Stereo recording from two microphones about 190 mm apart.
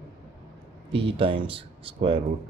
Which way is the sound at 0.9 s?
30° right (ahead or behind).